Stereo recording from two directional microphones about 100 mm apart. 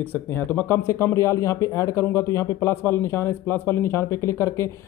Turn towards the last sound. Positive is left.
turn(degrees=25)  # may be behind; listen again after turning